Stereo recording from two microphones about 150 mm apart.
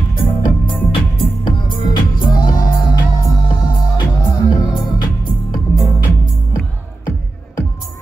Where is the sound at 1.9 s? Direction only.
30° left (ahead or behind).